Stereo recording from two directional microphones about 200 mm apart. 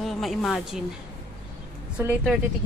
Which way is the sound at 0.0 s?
Centre (ahead or behind).